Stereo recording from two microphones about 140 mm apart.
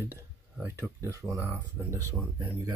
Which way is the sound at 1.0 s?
20° right (ahead or behind).